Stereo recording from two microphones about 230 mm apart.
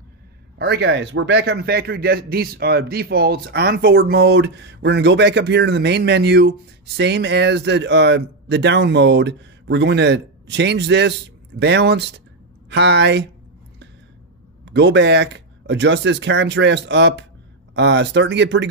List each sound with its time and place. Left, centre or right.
0.6 s a man's voice: right
14.6 s a man's voice: right